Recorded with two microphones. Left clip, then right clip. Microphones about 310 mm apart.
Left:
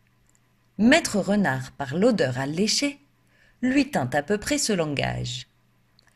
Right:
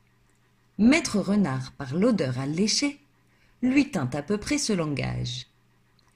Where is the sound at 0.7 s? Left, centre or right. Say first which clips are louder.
Left 3 dB; left.